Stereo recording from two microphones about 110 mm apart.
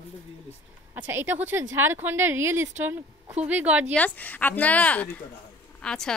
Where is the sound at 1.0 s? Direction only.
20° right (ahead or behind).